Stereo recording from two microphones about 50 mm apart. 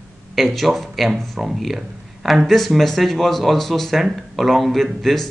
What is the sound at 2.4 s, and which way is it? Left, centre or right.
Speech, centre.